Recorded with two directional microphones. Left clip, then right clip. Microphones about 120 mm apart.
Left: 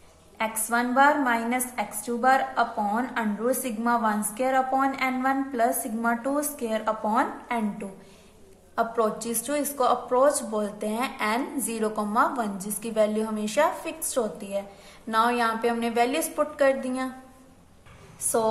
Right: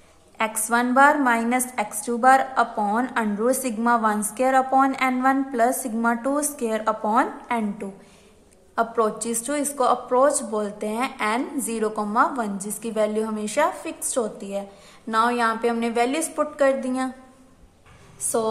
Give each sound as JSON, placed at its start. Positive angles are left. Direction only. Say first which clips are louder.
{"t": 0.4, "sound": "a woman's voice", "louder": "right 4 dB", "side_deg": -30}
{"t": 18.3, "sound": "a woman's voice", "louder": "right 1 dB", "side_deg": -10}